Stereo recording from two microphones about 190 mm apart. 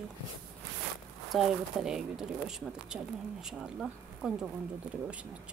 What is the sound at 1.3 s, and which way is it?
A woman's voice, centre (ahead or behind).